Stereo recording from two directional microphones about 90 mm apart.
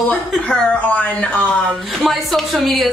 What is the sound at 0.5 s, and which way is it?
A woman's voice, 15° left (ahead or behind).